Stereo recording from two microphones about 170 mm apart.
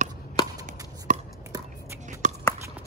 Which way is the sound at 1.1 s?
50° right (ahead or behind).